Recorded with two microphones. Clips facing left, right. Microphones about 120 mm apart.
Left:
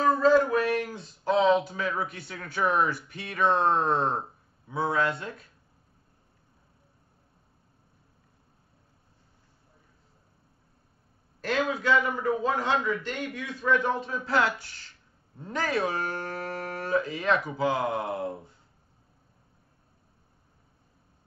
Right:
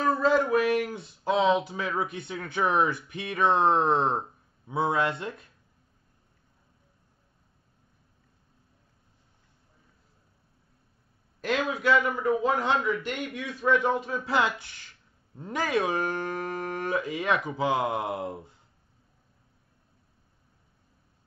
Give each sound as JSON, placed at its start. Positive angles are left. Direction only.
{"t": 0.1, "sound": "a sound", "side_deg": -5}
{"t": 1.5, "sound": "speech", "side_deg": -15}
{"t": 11.4, "sound": "speech", "side_deg": -10}